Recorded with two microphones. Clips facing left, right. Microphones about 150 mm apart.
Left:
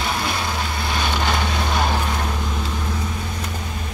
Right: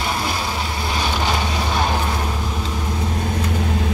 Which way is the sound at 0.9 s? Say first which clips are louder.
Right 1 dB; 5° right (ahead or behind).